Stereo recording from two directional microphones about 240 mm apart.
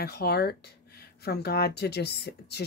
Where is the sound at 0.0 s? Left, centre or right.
Left.